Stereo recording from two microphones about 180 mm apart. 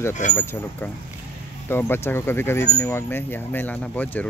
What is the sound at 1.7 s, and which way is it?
Speech, 10° left (ahead or behind).